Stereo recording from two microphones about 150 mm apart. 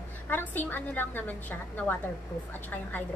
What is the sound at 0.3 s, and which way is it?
A woman's voice, 10° left (ahead or behind).